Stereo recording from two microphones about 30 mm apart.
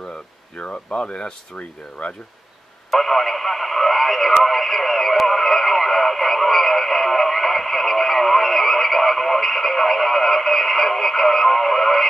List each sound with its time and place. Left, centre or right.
0.6 s speech: left
1.6 s speech: left
2.9 s radio: centre